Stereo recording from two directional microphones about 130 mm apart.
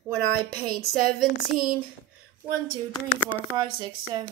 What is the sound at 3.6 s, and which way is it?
Speech, 35° right (ahead or behind).